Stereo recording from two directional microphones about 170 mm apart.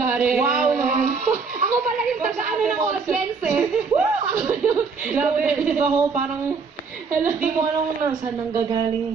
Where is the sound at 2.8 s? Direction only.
15° right (ahead or behind).